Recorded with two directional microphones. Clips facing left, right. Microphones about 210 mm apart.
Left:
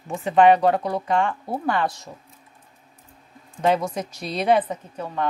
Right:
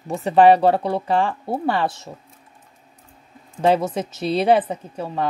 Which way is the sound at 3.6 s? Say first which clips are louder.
Right 3 dB; 30° right (ahead or behind).